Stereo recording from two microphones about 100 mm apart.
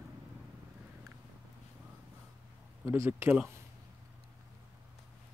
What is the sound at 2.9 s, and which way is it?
Speech, 25° right (ahead or behind).